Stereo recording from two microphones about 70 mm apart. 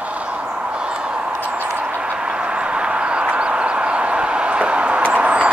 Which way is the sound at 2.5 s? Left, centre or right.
Centre.